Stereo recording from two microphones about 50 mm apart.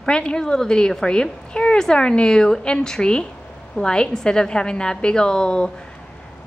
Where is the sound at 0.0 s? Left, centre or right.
Centre.